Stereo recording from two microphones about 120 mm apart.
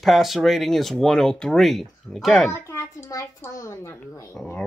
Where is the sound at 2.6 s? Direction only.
25° left (ahead or behind).